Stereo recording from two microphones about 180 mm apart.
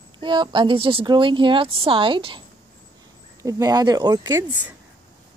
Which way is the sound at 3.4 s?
20° right (ahead or behind).